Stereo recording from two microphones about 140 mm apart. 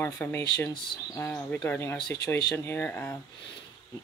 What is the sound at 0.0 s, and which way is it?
Speech, 15° left (ahead or behind).